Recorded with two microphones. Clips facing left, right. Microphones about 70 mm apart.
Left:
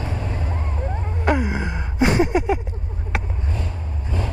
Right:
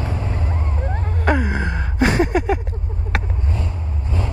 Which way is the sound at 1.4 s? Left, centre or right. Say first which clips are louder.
Right 2 dB; centre.